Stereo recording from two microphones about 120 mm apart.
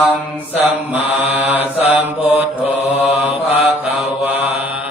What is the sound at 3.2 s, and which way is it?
Mantra, 15° right (ahead or behind).